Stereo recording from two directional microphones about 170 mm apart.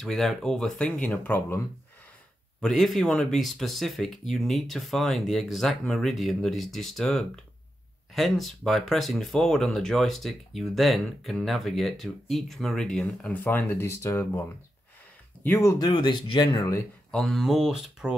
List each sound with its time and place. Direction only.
0.0 s speech: centre (ahead or behind)
2.6 s speech: centre (ahead or behind)
15.4 s speech: 15° left (ahead or behind)
17.1 s speech: centre (ahead or behind)